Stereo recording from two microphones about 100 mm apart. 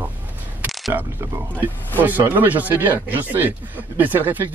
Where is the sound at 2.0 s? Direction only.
20° right (ahead or behind).